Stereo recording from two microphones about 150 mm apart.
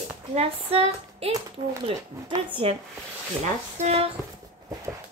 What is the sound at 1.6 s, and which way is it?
Speech, 30° right (ahead or behind).